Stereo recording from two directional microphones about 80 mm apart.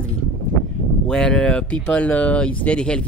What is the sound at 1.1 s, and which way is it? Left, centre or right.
Speech, centre.